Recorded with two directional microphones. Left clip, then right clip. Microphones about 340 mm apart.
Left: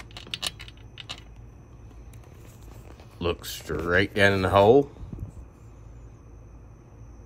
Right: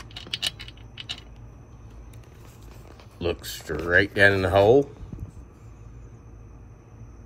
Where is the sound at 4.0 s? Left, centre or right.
Centre.